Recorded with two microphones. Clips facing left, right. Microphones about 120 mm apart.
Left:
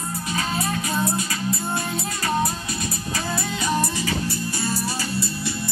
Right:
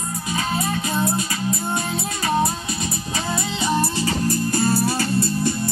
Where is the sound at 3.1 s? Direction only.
20° right (ahead or behind).